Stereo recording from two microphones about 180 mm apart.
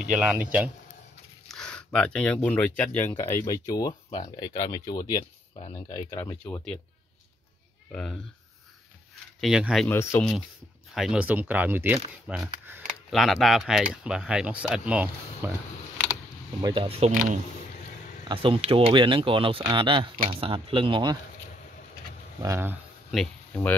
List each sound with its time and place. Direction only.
0.2 s speech: 5° right (ahead or behind)
1.5 s speech: 5° left (ahead or behind); by 6.0 s 30° left (ahead or behind)
6.0 s speech: 15° left (ahead or behind)
7.9 s speech: 5° left (ahead or behind)
9.4 s speech: 5° right (ahead or behind)
9.8 s speech: 15° left (ahead or behind)
11.0 s speech: 5° right (ahead or behind)
16.6 s speech: 30° right (ahead or behind)
18.3 s speech: 30° right (ahead or behind)
22.4 s speech: 15° right (ahead or behind)
23.1 s speech: 5° left (ahead or behind)